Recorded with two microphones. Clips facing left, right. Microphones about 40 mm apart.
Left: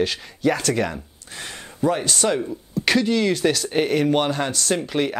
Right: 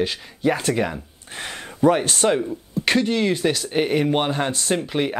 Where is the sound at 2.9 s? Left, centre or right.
Centre.